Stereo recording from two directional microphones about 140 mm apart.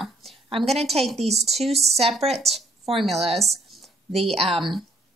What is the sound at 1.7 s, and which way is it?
Speech, 50° right (ahead or behind).